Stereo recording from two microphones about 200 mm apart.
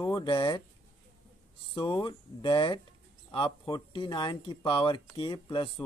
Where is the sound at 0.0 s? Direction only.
20° left (ahead or behind).